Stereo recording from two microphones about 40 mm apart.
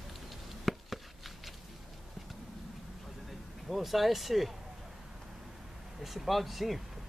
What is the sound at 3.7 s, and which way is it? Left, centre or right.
Speech, centre.